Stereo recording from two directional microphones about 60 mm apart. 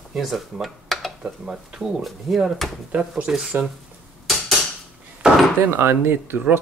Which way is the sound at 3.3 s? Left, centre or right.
Centre.